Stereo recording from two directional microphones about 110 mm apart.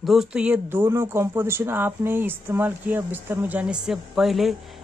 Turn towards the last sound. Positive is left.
turn(degrees=0)  # may be behind; listen again after turning